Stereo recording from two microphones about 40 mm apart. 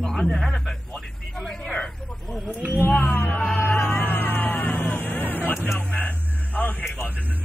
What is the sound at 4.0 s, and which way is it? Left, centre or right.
Music, left.